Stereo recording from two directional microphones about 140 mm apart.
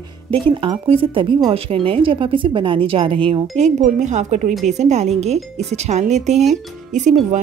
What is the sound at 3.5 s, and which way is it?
A woman's voice, 55° right (ahead or behind).